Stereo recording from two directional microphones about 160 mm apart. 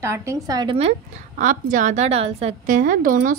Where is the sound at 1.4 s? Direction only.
55° right (ahead or behind).